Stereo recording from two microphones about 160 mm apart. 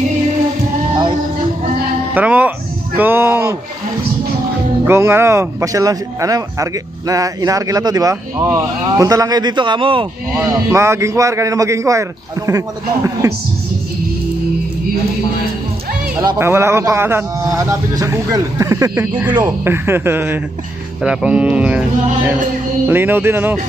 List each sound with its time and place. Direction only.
2.1 s a man's voice: 10° right (ahead or behind)
4.8 s speech: 15° right (ahead or behind); by 10.0 s 35° right (ahead or behind)
10.3 s speech: 15° right (ahead or behind)
16.2 s a man's voice: 20° right (ahead or behind)